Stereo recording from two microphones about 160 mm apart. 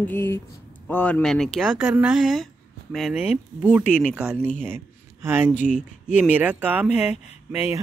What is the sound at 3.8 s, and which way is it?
Speech, 55° left (ahead or behind).